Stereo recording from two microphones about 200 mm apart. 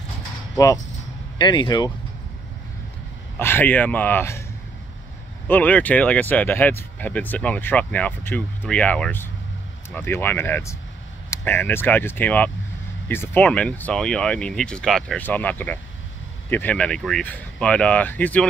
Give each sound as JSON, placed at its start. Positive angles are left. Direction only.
{"t": 1.4, "sound": "speech", "side_deg": 20}
{"t": 3.3, "sound": "speech", "side_deg": 10}
{"t": 5.5, "sound": "speech", "side_deg": 10}